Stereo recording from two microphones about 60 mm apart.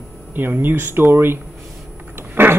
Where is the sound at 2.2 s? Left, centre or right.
Right.